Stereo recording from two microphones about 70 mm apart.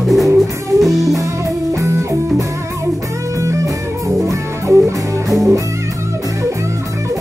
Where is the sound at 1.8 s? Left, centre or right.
Right.